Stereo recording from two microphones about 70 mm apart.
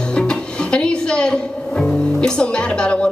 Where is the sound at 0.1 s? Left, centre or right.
Centre.